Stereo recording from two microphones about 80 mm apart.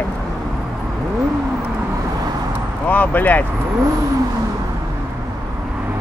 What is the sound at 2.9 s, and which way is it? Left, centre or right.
Speech, left.